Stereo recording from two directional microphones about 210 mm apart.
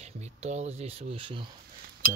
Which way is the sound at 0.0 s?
30° right (ahead or behind).